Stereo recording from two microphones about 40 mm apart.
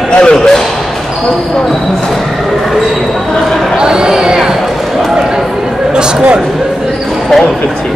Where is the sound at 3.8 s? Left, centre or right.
Centre.